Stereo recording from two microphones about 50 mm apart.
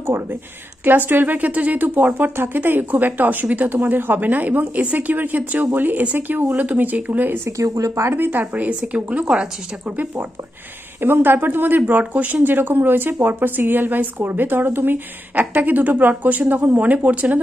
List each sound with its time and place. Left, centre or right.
0.0 s speech: right
2.3 s speech: right
2.6 s speech: right
7.4 s speech: right
8.1 s a woman's voice: right
11.0 s speech: right